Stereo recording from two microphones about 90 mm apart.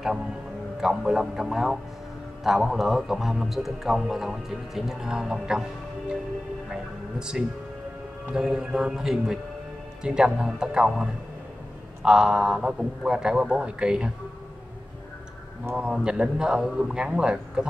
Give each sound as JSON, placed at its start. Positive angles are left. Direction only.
{"t": 0.7, "sound": "a man's voice", "side_deg": -5}
{"t": 15.7, "sound": "a man's voice", "side_deg": -10}